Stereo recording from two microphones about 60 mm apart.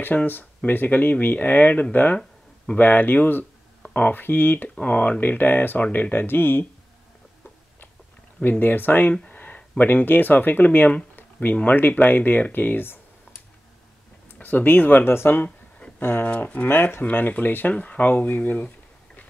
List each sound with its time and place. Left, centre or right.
0.0 s speech: left
2.1 s a sound: centre
2.8 s speech: left
4.8 s speech: left
8.4 s speech: left
9.3 s a sound: left
9.8 s speech: left
14.4 s speech: left
16.6 s speech: left